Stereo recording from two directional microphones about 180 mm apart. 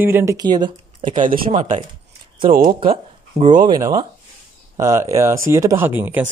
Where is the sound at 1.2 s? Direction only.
45° right (ahead or behind).